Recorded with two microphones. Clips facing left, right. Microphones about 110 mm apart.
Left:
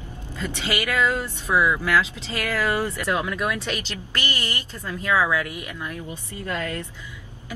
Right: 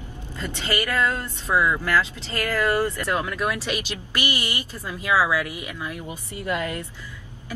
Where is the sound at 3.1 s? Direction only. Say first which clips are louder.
Even; 5° left (ahead or behind); by 6.9 s 15° right (ahead or behind).